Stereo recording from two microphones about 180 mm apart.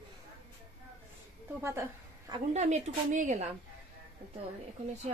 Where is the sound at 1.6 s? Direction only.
15° right (ahead or behind).